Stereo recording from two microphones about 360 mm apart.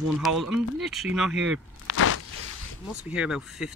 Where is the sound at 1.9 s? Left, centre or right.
Left.